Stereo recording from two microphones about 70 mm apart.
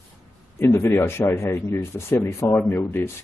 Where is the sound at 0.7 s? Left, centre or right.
Left.